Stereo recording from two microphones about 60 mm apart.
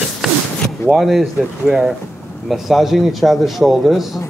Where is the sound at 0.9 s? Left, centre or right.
Centre.